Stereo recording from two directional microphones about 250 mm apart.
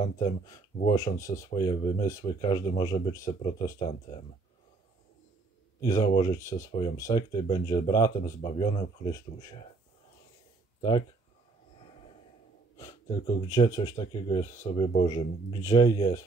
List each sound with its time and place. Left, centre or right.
0.0 s speech: centre
5.8 s speech: centre
10.8 s speech: centre
13.1 s speech: centre